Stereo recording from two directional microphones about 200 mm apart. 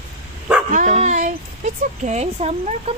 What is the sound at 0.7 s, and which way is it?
Speech, 40° right (ahead or behind).